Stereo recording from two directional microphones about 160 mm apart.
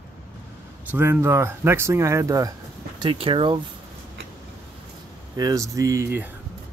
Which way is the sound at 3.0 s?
30° right (ahead or behind).